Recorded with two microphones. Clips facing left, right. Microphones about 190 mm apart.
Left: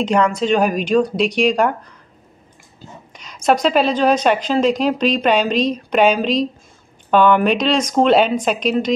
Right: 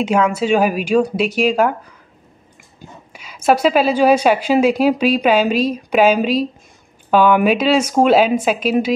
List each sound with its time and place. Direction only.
0.0 s speech: 5° right (ahead or behind)
2.8 s speech: 5° right (ahead or behind)